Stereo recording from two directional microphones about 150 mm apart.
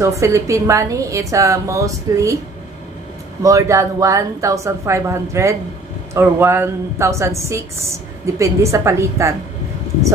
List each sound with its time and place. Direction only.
0.0 s a woman's voice: 20° right (ahead or behind)
3.4 s a woman's voice: 20° right (ahead or behind)